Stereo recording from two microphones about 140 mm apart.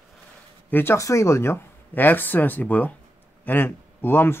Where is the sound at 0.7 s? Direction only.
15° left (ahead or behind).